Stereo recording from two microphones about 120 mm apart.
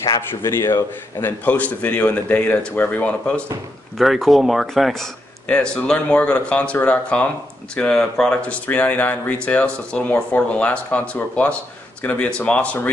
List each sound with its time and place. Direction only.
0.3 s a man's voice: 20° left (ahead or behind)
4.0 s a man's voice: centre (ahead or behind)